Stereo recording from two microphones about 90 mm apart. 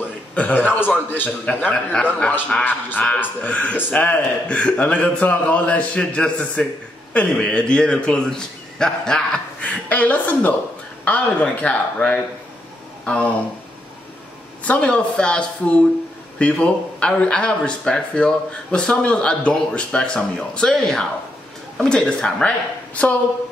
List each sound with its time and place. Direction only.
0.3 s a man's voice: 15° left (ahead or behind)
14.6 s a man's voice: 15° left (ahead or behind)